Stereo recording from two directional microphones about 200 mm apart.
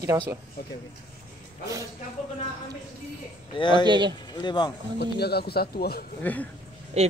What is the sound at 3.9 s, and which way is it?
Speech, 20° right (ahead or behind).